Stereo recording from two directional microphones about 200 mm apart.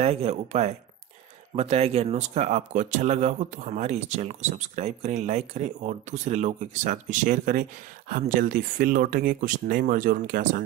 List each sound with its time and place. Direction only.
0.0 s speech: 30° right (ahead or behind)